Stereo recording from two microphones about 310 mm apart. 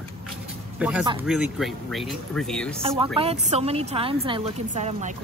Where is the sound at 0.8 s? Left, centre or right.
Centre.